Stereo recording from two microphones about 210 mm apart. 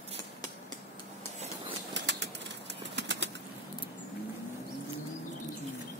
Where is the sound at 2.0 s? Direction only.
55° right (ahead or behind).